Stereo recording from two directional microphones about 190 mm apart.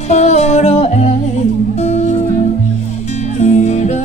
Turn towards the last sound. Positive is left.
turn(degrees=35)  # may be behind; listen again after turning